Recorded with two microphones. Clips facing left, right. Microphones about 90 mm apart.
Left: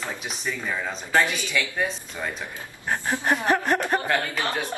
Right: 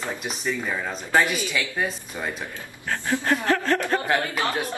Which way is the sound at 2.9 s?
20° left (ahead or behind).